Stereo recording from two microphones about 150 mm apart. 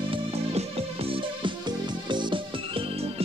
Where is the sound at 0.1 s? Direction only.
40° right (ahead or behind).